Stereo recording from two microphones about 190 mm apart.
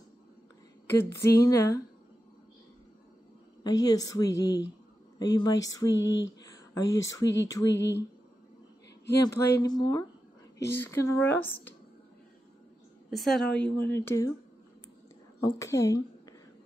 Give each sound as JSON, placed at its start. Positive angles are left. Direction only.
{"t": 0.8, "sound": "speech", "side_deg": 15}
{"t": 3.6, "sound": "speech", "side_deg": 20}
{"t": 5.9, "sound": "a sound", "side_deg": 70}
{"t": 6.7, "sound": "speech", "side_deg": 15}
{"t": 7.7, "sound": "a sound", "side_deg": 65}
{"t": 9.2, "sound": "speech", "side_deg": 15}
{"t": 13.1, "sound": "a woman's voice", "side_deg": 0}
{"t": 15.4, "sound": "a woman's voice", "side_deg": 15}